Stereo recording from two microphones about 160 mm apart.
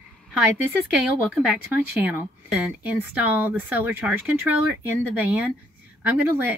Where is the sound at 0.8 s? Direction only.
5° right (ahead or behind).